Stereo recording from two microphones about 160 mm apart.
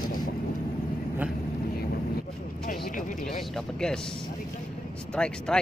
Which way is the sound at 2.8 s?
60° left (ahead or behind).